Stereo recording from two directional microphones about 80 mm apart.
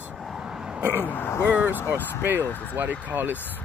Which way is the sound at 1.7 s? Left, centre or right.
Left.